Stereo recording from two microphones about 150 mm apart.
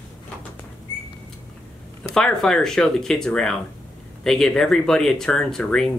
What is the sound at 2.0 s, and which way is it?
Speech, 5° left (ahead or behind).